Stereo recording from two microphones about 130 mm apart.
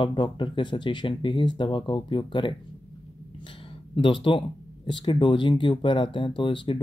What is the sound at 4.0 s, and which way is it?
Speech, 40° left (ahead or behind).